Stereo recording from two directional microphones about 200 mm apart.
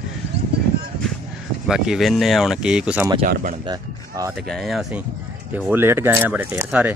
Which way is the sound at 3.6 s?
20° right (ahead or behind).